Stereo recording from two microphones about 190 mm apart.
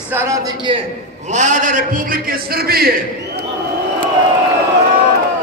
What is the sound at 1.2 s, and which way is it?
A man's voice, 40° right (ahead or behind).